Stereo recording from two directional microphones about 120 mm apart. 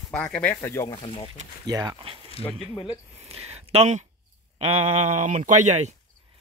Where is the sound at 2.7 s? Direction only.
40° left (ahead or behind).